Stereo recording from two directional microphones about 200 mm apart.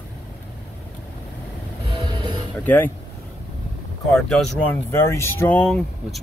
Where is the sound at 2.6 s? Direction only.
10° left (ahead or behind).